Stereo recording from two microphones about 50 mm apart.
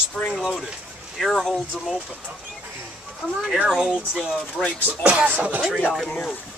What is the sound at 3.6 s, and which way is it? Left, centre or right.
Speech, centre.